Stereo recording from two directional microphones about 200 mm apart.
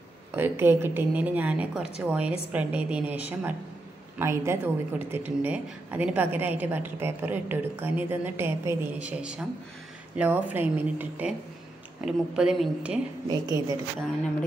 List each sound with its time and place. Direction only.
0.4 s a woman's voice: 10° right (ahead or behind)
4.2 s a woman's voice: 10° right (ahead or behind)
13.3 s speech: 20° right (ahead or behind)